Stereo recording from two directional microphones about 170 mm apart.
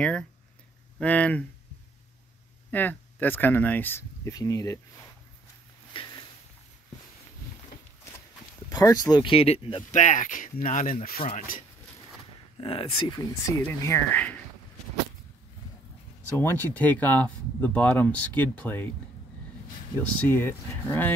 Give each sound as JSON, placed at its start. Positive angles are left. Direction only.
{"t": 0.0, "sound": "speech", "side_deg": 5}
{"t": 2.7, "sound": "speech", "side_deg": 10}
{"t": 5.9, "sound": "a sound", "side_deg": 30}
{"t": 8.6, "sound": "speech", "side_deg": 20}
{"t": 9.8, "sound": "speech", "side_deg": 45}
{"t": 12.5, "sound": "speech", "side_deg": 30}
{"t": 13.7, "sound": "speech", "side_deg": 15}
{"t": 16.3, "sound": "speech", "side_deg": 10}
{"t": 20.2, "sound": "speech", "side_deg": 10}